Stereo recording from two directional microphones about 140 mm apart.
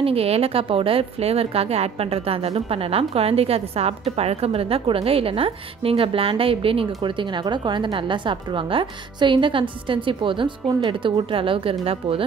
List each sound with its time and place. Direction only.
0.0 s a woman's voice: 45° right (ahead or behind)